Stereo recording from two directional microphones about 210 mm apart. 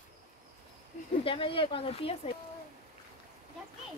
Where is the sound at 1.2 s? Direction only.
25° left (ahead or behind).